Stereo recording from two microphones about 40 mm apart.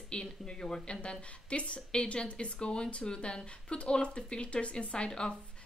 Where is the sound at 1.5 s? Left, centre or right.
Left.